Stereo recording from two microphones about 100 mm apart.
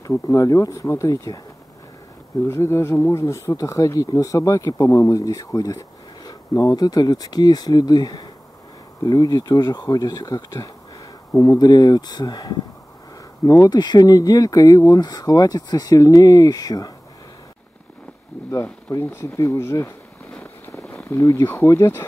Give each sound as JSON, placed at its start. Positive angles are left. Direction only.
{"t": 0.3, "sound": "speech", "side_deg": 30}
{"t": 2.4, "sound": "speech", "side_deg": 25}
{"t": 13.7, "sound": "speech", "side_deg": 45}
{"t": 18.9, "sound": "speech", "side_deg": 30}
{"t": 20.2, "sound": "a sound", "side_deg": 15}
{"t": 21.1, "sound": "speech", "side_deg": 30}